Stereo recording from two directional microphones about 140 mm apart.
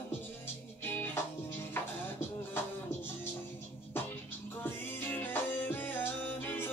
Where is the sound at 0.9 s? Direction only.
15° left (ahead or behind).